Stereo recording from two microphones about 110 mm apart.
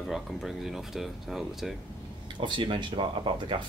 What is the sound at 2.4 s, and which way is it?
Speech, 45° right (ahead or behind).